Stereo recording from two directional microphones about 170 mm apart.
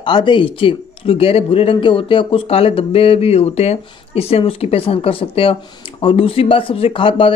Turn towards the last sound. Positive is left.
turn(degrees=30)  # may be behind; listen again after turning